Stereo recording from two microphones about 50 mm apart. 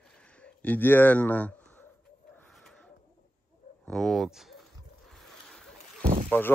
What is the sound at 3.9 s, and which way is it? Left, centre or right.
Speech, centre.